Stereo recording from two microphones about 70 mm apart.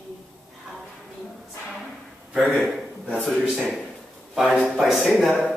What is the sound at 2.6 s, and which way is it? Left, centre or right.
Speech, centre.